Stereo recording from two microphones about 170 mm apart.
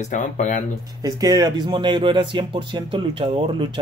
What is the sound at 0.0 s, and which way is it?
Speech, 45° left (ahead or behind).